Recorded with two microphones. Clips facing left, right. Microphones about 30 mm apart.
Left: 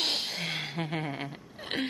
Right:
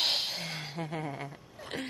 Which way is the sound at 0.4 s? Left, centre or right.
Centre.